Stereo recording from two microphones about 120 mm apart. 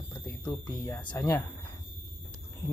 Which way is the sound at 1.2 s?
25° left (ahead or behind).